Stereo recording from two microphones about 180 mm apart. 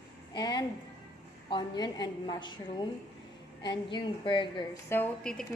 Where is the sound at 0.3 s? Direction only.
25° left (ahead or behind).